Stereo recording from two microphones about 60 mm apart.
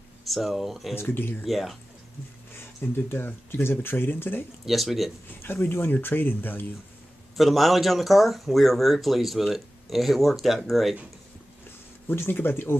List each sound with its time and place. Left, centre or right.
0.2 s speech: centre
0.9 s speech: left
1.4 s speech: centre
2.5 s speech: left
4.6 s speech: centre
5.4 s speech: left
7.3 s speech: centre
12.1 s speech: left